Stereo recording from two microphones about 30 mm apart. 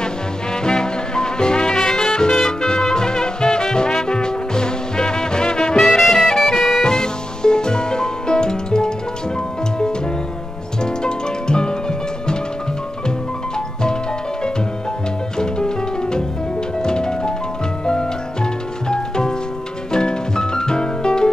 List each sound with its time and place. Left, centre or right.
0.7 s music: left
5.8 s music: centre
6.1 s bagpipes: left
6.8 s music: left
10.8 s music: left
15.3 s music: left